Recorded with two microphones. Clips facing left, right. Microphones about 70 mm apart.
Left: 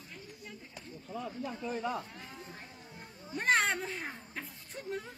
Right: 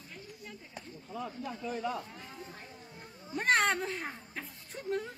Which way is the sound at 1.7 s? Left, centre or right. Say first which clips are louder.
Even; left.